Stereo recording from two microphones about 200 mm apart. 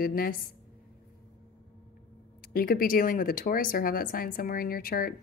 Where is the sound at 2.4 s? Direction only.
50° left (ahead or behind).